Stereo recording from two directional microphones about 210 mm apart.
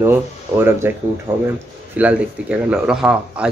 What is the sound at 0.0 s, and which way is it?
Speech, 10° right (ahead or behind).